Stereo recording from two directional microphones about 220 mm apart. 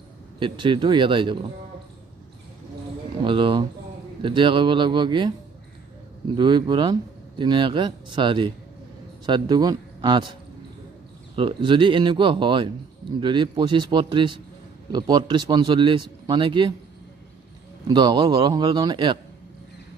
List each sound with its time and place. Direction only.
0.4 s a man's voice: 20° right (ahead or behind)
3.2 s a man's voice: 20° right (ahead or behind)
11.3 s a man's voice: 20° right (ahead or behind)
17.8 s a man's voice: 20° right (ahead or behind)